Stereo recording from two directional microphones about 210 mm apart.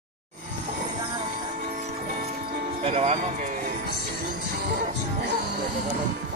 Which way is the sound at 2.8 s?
30° right (ahead or behind).